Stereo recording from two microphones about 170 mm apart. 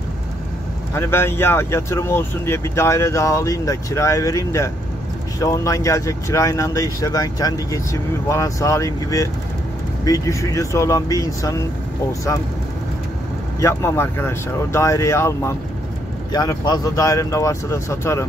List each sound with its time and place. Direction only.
0.9 s speech: 15° left (ahead or behind)
13.6 s speech: 15° left (ahead or behind)